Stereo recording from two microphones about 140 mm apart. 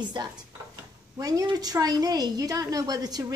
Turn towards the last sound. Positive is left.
turn(degrees=-25)  # may be behind; listen again after turning